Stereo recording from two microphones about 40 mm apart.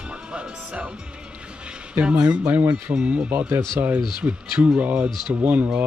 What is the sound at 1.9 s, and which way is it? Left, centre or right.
Speech, right.